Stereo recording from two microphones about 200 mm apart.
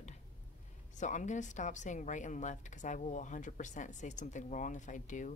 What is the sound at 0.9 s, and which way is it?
Speech, 35° left (ahead or behind).